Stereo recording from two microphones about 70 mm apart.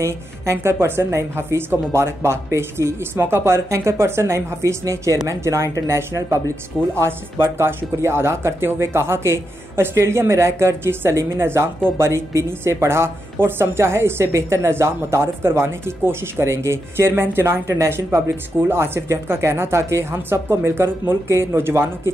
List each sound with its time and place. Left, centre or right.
0.0 s a woman's voice: right
7.0 s a woman's voice: right